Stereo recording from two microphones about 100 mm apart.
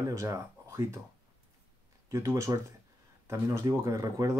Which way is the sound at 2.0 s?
30° right (ahead or behind).